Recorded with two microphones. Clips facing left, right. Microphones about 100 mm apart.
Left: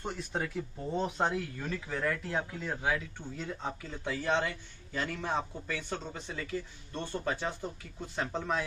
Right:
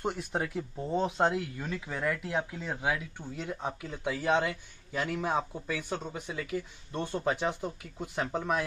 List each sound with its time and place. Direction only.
0.0 s speech: 15° right (ahead or behind)